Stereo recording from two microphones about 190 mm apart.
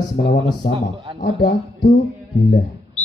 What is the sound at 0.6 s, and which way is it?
Speech, 45° left (ahead or behind).